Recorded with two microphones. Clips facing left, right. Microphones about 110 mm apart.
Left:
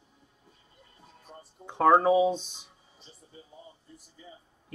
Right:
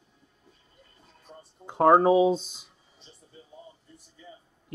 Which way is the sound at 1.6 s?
5° left (ahead or behind).